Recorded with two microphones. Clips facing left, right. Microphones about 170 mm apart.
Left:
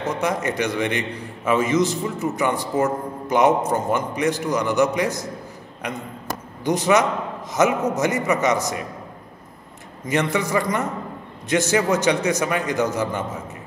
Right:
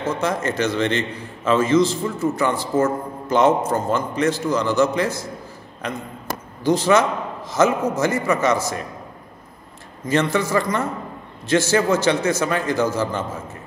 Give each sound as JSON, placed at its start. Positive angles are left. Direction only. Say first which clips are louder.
{"t": 0.0, "sound": "a man's voice", "louder": "right 1 dB", "side_deg": 15}
{"t": 10.0, "sound": "a man's voice", "louder": "right 2 dB", "side_deg": 15}